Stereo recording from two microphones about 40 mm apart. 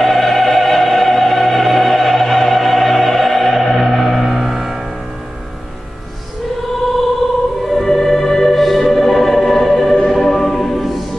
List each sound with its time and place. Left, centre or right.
0.0 s music: centre
7.7 s music: centre